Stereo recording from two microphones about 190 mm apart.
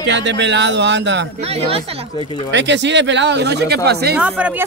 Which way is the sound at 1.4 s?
35° right (ahead or behind).